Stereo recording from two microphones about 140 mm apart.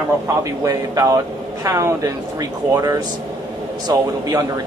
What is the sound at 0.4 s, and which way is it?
Speech, 25° right (ahead or behind).